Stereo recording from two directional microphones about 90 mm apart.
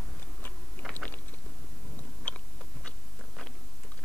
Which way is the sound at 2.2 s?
15° left (ahead or behind).